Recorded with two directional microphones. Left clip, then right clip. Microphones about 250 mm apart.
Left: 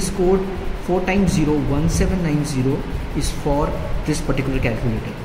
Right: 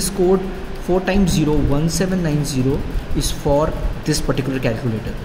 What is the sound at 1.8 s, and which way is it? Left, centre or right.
Speech, centre.